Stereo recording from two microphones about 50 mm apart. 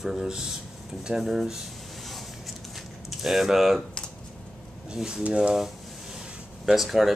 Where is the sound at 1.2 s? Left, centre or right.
Centre.